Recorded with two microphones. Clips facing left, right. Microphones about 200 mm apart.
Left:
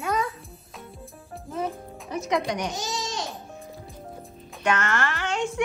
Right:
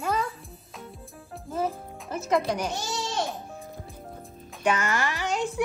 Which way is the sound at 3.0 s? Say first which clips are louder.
Right 3 dB; 55° right (ahead or behind).